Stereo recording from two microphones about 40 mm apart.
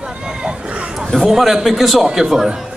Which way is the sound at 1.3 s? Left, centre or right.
Centre.